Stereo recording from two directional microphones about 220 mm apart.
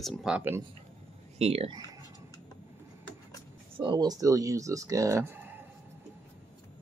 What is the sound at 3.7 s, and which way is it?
Speech, 20° right (ahead or behind).